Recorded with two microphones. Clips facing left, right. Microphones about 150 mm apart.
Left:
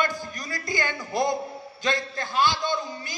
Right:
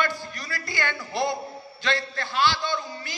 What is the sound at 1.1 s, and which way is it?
Speech, 45° left (ahead or behind).